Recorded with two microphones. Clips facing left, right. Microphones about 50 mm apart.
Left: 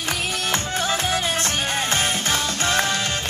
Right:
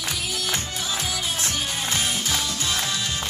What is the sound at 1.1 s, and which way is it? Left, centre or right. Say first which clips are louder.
Music: left 5 dB; left.